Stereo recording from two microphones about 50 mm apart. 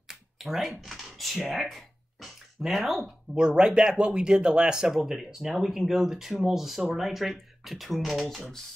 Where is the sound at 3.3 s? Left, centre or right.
Centre.